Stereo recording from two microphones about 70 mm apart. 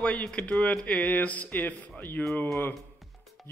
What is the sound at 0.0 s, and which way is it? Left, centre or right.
Speech, centre.